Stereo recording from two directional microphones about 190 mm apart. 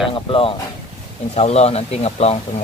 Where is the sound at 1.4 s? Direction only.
35° left (ahead or behind).